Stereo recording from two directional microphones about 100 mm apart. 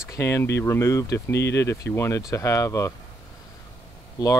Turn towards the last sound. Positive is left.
turn(degrees=40)  # may be behind; listen again after turning